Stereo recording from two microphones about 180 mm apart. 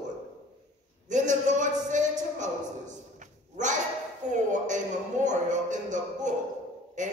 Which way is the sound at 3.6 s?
40° right (ahead or behind).